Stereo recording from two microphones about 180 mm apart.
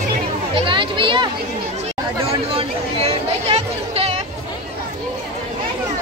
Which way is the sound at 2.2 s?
35° right (ahead or behind).